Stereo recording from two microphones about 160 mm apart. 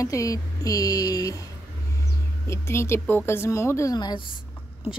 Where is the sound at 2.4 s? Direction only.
15° left (ahead or behind).